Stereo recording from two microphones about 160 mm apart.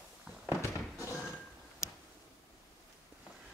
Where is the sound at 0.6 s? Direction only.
20° left (ahead or behind).